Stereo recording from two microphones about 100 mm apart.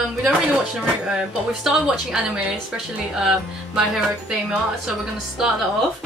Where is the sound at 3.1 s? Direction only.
5° right (ahead or behind).